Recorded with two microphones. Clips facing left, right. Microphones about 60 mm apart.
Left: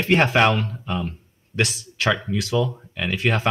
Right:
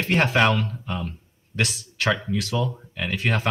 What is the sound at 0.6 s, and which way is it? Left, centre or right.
Speech, left.